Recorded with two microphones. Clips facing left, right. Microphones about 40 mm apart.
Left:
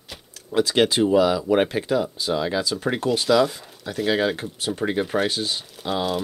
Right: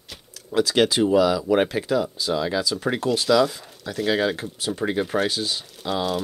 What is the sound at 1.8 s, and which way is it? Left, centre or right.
Speech, left.